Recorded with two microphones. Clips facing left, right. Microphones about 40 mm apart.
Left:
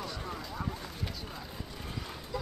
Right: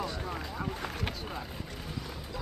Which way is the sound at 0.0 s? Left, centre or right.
Centre.